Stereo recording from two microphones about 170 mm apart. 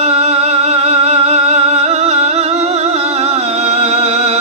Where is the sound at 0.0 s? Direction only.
40° right (ahead or behind).